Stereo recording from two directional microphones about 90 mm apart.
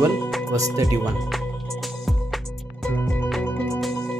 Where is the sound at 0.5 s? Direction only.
40° right (ahead or behind).